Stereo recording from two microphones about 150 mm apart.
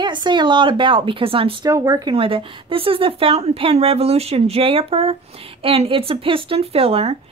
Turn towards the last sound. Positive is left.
turn(degrees=-40)  # may be behind; listen again after turning